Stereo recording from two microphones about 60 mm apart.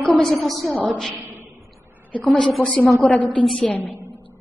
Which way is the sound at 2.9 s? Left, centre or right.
Centre.